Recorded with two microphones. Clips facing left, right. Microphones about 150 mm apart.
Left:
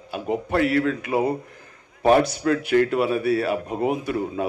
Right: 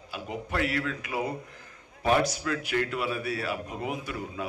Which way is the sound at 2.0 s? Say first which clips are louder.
Left 7 dB; 55° left (ahead or behind).